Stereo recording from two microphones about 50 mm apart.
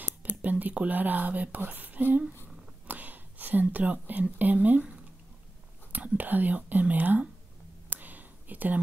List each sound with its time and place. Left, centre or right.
0.2 s speech: right
2.4 s whispering: right
5.9 s speech: right
7.9 s whispering: right